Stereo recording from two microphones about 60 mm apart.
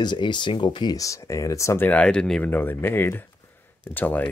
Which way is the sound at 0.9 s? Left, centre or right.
Left.